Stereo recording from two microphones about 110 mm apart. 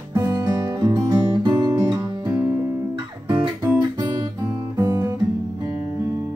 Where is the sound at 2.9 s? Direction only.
45° right (ahead or behind).